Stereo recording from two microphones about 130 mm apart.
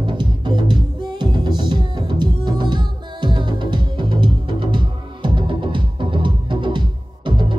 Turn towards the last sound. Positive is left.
turn(degrees=-40)  # may be behind; listen again after turning